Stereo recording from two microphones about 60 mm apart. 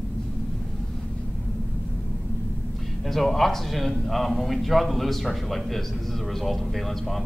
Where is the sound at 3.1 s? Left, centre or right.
Centre.